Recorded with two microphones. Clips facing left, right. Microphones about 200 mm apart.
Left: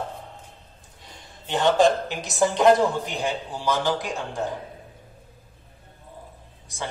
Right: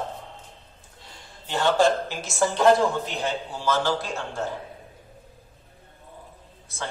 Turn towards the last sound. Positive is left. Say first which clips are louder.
# left 1 dB
turn(degrees=15)  # may be behind; listen again after turning